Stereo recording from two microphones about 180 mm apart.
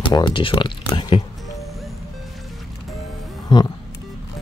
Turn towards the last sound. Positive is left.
turn(degrees=25)  # may be behind; listen again after turning